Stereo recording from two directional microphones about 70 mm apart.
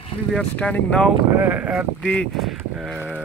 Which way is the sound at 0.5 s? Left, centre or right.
Centre.